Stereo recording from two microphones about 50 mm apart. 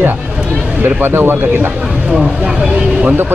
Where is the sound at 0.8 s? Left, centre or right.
Right.